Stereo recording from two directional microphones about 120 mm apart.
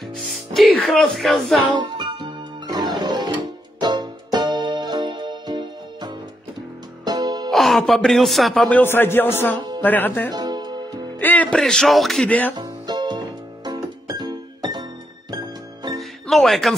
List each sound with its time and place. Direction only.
0.1 s speech: 5° left (ahead or behind)
1.8 s music: 35° right (ahead or behind)
7.5 s speech: centre (ahead or behind)
8.6 s a man's voice: 15° left (ahead or behind)
10.3 s music: 35° right (ahead or behind)
11.1 s speech: 15° left (ahead or behind)
12.3 s a man's voice: 15° left (ahead or behind)
12.5 s music: 35° right (ahead or behind)
16.0 s music: centre (ahead or behind)